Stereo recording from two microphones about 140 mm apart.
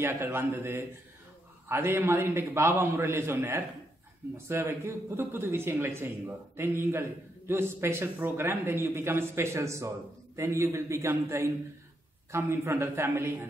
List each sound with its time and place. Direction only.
0.0 s speech: 15° right (ahead or behind)